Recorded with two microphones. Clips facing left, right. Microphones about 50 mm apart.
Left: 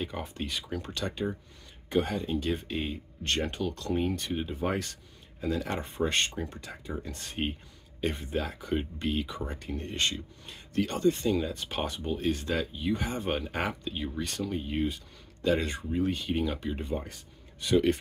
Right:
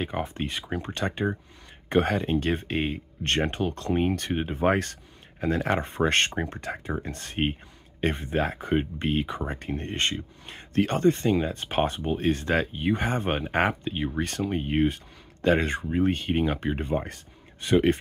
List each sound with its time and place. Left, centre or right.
0.0 s speech: right
4.1 s speech: right